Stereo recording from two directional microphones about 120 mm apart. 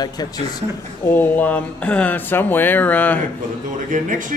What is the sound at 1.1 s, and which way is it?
Speech, 15° left (ahead or behind).